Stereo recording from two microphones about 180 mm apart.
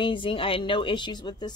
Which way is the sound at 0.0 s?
30° left (ahead or behind).